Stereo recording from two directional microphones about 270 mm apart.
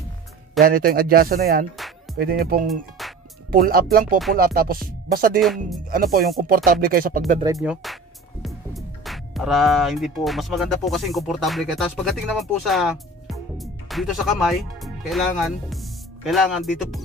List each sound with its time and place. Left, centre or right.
0.7 s music: right
3.0 s music: centre
3.5 s music: right
7.5 s speech: centre